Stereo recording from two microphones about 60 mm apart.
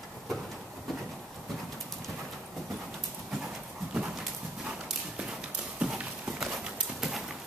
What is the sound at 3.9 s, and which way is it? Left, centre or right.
Clip-clop, centre.